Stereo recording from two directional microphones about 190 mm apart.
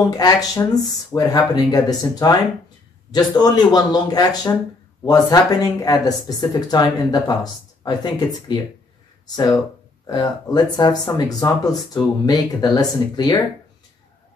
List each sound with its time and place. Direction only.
0.0 s speech: 20° left (ahead or behind)